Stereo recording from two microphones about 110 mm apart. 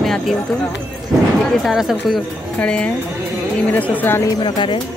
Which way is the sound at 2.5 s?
10° left (ahead or behind).